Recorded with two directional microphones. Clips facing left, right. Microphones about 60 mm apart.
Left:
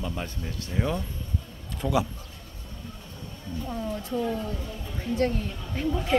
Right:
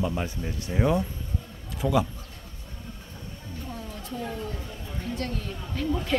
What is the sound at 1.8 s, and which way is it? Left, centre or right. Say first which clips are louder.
Speech: right 1 dB; centre.